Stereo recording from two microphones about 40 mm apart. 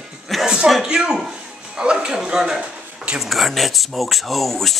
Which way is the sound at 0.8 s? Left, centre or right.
Centre.